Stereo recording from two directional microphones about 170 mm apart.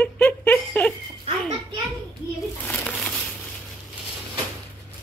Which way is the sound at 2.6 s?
10° left (ahead or behind).